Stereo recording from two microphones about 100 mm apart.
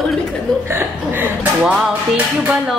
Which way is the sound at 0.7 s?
25° right (ahead or behind).